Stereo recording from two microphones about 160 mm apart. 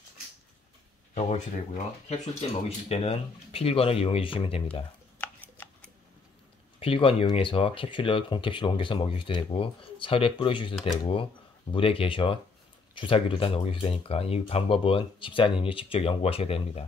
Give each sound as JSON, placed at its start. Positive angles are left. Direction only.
{"t": 1.1, "sound": "speech", "side_deg": 50}
{"t": 5.2, "sound": "tick-tock", "side_deg": 10}
{"t": 6.8, "sound": "speech", "side_deg": 35}